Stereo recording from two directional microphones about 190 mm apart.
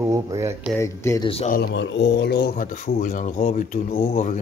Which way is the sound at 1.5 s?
65° left (ahead or behind).